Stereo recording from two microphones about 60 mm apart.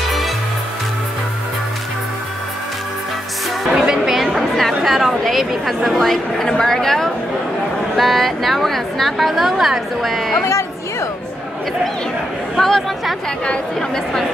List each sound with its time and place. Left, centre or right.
3.7 s a woman's voice: centre
10.4 s chatter: left
12.5 s a woman's voice: centre